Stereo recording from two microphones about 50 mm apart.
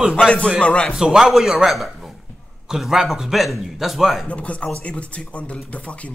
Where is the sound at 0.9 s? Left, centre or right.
Centre.